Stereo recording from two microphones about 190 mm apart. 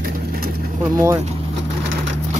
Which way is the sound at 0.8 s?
15° right (ahead or behind).